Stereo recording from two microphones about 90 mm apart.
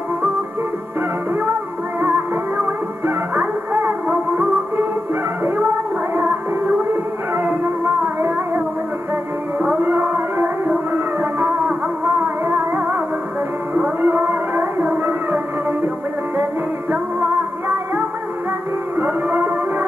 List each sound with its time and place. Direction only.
2.0 s music: 25° right (ahead or behind)
7.3 s music: 25° right (ahead or behind)
9.8 s music: 25° right (ahead or behind)
13.7 s a sound: 20° right (ahead or behind)
18.9 s music: 20° right (ahead or behind)